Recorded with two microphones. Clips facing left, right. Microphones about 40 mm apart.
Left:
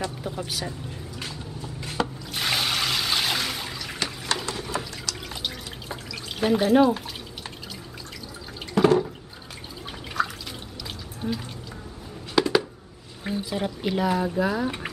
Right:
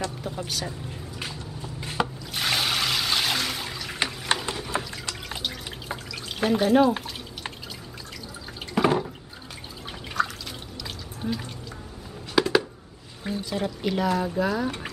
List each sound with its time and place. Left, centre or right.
0.0 s speech: centre
1.2 s a sound: centre
2.3 s water: centre
4.3 s a sound: right
4.7 s water: right
5.9 s drip: centre
8.7 s water: centre
10.2 s drip: centre
11.1 s water: centre
12.4 s a sound: centre
13.2 s speech: centre